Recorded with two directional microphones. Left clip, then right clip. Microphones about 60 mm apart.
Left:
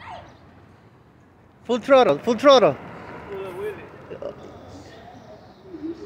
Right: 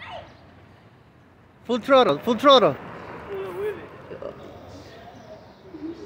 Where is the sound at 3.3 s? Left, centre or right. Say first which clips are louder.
Right 2 dB; right.